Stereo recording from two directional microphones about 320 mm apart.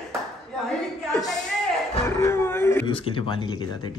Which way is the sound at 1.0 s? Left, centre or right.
Centre.